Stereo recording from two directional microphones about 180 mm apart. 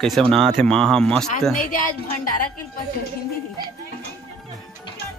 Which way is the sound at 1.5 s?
45° left (ahead or behind).